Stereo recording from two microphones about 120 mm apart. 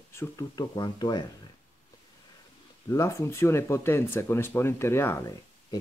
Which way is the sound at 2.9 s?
25° left (ahead or behind).